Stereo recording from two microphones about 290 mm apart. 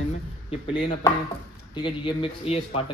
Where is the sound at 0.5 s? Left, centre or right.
Centre.